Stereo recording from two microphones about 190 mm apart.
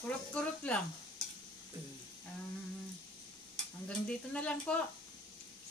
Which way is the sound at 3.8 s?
5° left (ahead or behind).